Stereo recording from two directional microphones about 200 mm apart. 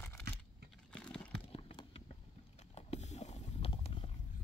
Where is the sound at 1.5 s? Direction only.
25° left (ahead or behind).